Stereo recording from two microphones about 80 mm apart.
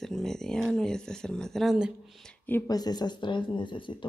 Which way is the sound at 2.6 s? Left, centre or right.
Left.